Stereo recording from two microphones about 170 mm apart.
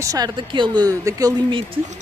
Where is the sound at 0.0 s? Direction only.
20° right (ahead or behind).